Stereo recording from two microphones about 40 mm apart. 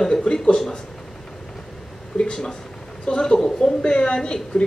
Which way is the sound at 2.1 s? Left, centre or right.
Centre.